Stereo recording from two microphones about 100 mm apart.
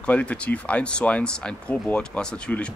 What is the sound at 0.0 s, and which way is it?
Speech, 15° left (ahead or behind).